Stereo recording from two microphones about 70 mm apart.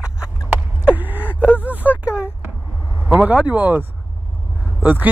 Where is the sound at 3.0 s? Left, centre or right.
Right.